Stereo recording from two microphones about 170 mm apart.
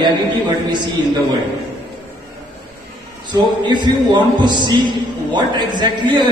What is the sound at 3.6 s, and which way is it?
A man's voice, 25° right (ahead or behind).